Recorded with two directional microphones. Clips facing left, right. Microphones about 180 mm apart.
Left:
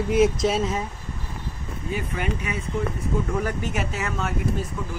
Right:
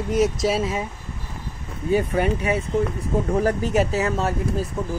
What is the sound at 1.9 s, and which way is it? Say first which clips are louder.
Speech: right 8 dB; 35° right (ahead or behind).